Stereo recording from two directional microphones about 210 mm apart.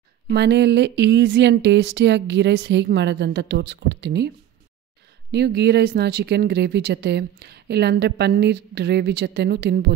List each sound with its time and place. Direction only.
0.3 s speech: 55° right (ahead or behind)
5.3 s speech: 50° right (ahead or behind)